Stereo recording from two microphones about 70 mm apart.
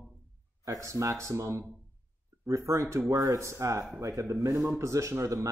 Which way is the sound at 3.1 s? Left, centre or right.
Right.